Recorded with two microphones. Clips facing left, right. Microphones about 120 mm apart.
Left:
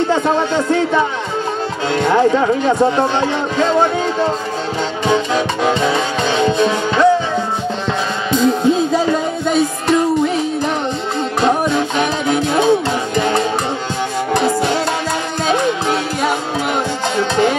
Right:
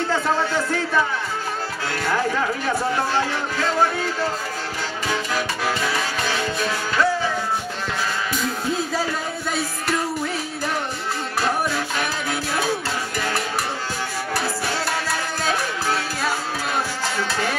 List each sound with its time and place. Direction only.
0.1 s speech: 20° left (ahead or behind)
5.0 s music: 25° left (ahead or behind)
8.3 s music: 25° left (ahead or behind)
11.4 s music: 20° left (ahead or behind)